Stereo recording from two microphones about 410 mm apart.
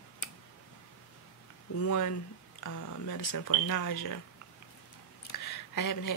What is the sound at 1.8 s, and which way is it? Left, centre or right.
Speech, left.